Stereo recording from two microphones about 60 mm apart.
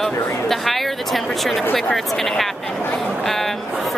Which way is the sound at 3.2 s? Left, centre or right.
Centre.